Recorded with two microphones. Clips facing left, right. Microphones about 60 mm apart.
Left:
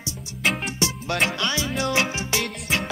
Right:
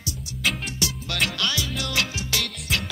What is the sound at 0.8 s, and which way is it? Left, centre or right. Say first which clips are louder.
Music: left 4 dB; left.